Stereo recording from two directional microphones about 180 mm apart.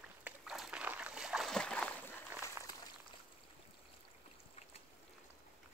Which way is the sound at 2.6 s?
15° right (ahead or behind).